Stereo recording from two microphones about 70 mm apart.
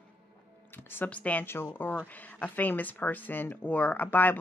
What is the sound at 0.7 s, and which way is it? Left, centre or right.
Speech, left.